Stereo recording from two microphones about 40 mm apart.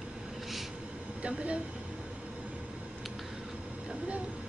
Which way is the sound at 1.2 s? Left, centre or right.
Right.